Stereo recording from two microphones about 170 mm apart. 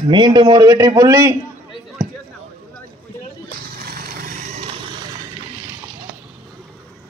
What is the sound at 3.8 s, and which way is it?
Vehicle, 60° right (ahead or behind).